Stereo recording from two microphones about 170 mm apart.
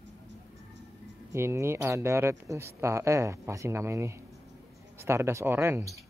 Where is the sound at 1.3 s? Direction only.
15° right (ahead or behind).